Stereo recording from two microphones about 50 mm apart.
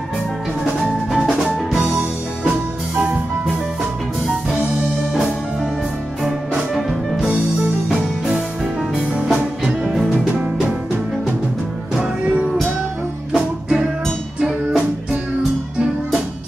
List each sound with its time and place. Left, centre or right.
1.1 s music: centre
6.5 s music: centre
9.3 s music: centre
11.9 s music: right
13.3 s music: centre